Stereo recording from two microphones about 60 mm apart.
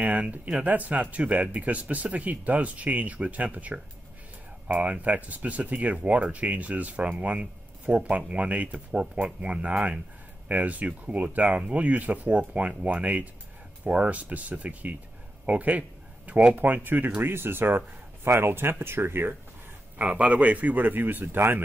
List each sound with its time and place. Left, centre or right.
0.0 s speech: right
20.0 s speech: right